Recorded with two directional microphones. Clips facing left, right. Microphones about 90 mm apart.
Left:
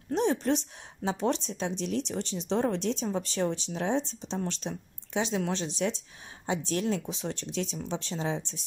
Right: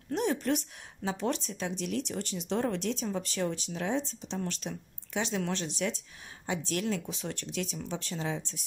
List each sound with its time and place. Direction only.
0.1 s speech: 25° left (ahead or behind)